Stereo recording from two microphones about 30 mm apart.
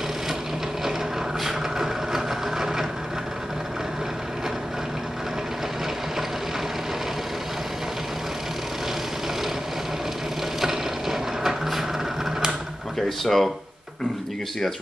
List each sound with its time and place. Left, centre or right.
1.4 s a sound: centre
10.6 s ratchet: centre
13.2 s speech: centre